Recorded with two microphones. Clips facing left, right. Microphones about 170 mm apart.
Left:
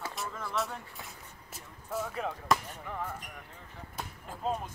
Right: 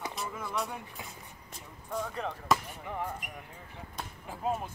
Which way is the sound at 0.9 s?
Centre (ahead or behind).